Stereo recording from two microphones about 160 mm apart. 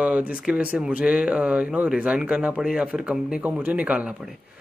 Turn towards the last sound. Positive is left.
turn(degrees=-10)  # may be behind; listen again after turning